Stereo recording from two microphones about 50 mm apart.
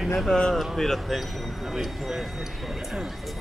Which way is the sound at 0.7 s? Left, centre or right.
Centre.